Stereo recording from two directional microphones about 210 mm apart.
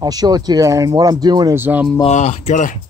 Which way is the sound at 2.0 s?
30° left (ahead or behind).